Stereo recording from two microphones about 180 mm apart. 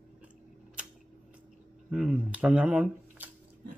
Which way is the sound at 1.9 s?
5° right (ahead or behind).